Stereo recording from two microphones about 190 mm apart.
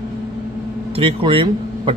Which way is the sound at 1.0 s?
30° right (ahead or behind).